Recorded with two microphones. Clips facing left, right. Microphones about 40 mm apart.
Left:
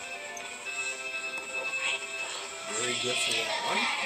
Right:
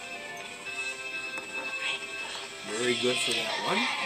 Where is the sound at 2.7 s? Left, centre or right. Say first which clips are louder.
Right 4 dB; centre.